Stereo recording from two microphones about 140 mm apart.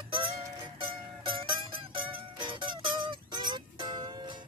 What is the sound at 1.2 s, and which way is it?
Music, 35° right (ahead or behind).